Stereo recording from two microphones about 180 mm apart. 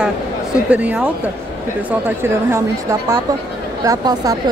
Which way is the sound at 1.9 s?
10° right (ahead or behind).